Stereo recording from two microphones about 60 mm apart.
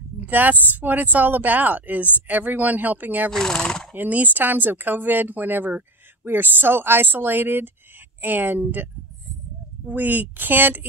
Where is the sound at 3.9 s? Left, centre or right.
Right.